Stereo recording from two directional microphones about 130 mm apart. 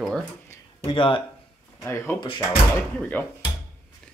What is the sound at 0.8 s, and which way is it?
Speech, 40° left (ahead or behind).